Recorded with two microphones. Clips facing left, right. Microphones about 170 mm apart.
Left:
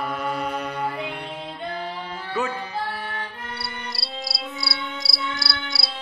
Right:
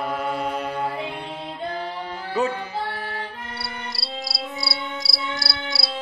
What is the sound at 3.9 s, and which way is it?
Cricket, centre (ahead or behind).